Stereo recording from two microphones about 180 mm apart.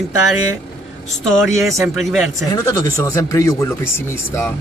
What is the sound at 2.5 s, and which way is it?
Speech, 20° left (ahead or behind).